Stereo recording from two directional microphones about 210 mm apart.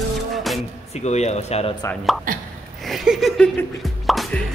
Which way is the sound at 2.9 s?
Centre (ahead or behind).